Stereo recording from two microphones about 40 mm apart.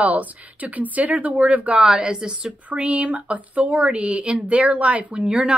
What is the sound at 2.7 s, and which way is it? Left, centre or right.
Speech, right.